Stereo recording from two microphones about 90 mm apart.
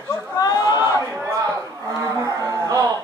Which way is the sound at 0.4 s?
45° left (ahead or behind).